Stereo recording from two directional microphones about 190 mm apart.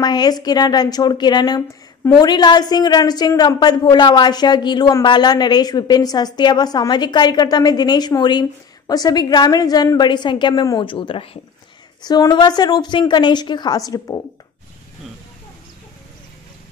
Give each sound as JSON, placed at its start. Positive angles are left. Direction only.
{"t": 0.0, "sound": "a woman's voice", "side_deg": 20}